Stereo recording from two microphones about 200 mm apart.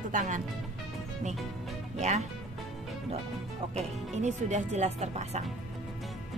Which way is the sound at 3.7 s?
35° right (ahead or behind).